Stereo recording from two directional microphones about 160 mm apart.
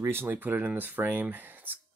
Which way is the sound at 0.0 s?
15° right (ahead or behind).